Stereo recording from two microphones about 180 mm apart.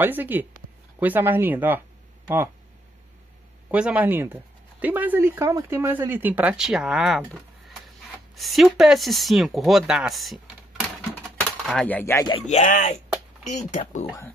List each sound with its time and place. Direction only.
0.0 s speech: 10° right (ahead or behind)
3.7 s speech: 10° right (ahead or behind)
8.4 s speech: centre (ahead or behind)
11.6 s speech: 5° left (ahead or behind)
12.4 s speech: 45° left (ahead or behind)